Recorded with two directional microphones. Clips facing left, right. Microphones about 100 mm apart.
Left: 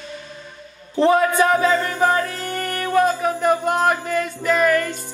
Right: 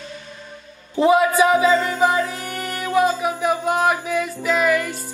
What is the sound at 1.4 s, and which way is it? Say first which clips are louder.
Music: right 1 dB; 10° right (ahead or behind).